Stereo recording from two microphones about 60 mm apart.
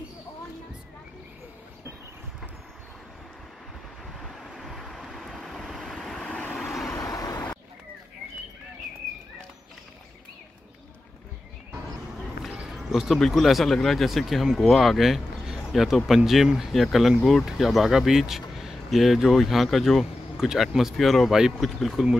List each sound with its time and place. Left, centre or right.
4.2 s vehicle: centre
6.2 s vehicle: left
6.5 s vehicle: centre
6.9 s vehicle: left
12.6 s a sound: centre
13.2 s speech: centre
17.2 s speech: centre
17.5 s speech: centre